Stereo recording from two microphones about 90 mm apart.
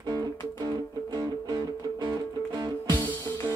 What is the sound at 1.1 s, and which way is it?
Music, 45° right (ahead or behind).